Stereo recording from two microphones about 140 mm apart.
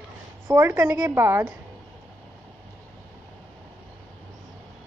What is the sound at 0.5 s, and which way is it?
A woman's voice, 20° right (ahead or behind).